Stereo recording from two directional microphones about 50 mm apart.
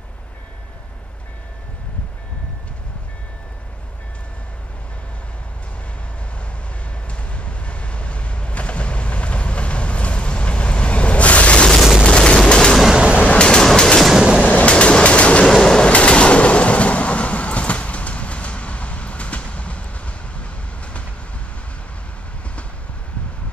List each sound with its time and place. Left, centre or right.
7.1 s train: left
12.0 s a sound: centre
12.4 s gunshot: centre
12.9 s a sound: right
13.2 s a sound: left
13.7 s train: centre
14.4 s train: left
15.4 s train: centre
15.9 s train: left